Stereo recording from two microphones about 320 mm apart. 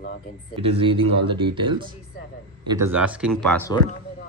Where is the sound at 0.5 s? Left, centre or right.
Centre.